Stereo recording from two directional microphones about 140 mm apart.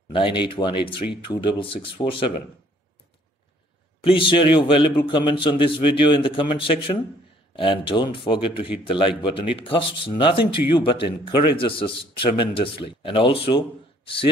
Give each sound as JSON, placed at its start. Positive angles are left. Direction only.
{"t": 0.4, "sound": "a man's voice", "side_deg": 35}
{"t": 4.0, "sound": "a man's voice", "side_deg": 40}